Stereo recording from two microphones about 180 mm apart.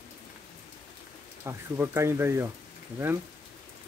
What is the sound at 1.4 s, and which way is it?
Speech, 15° right (ahead or behind).